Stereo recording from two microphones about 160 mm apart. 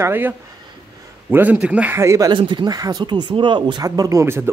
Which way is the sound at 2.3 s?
30° right (ahead or behind).